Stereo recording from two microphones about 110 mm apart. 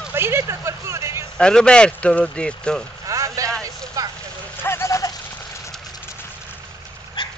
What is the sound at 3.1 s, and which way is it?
Vehicle, 30° right (ahead or behind).